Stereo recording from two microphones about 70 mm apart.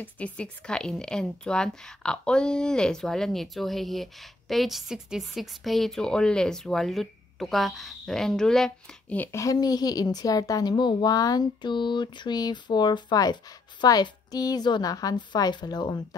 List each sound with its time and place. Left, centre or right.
0.0 s a woman's voice: centre
9.3 s a child's voice: left
9.6 s a woman's voice: left